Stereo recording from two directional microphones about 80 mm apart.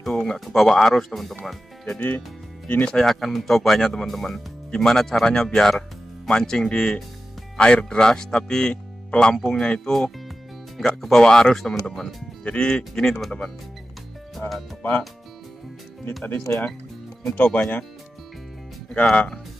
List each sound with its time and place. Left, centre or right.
0.0 s speech: centre
2.0 s speech: left
3.0 s speech: centre
12.4 s speech: centre
14.4 s speech: left
14.8 s speech: centre
16.3 s speech: left
19.1 s speech: centre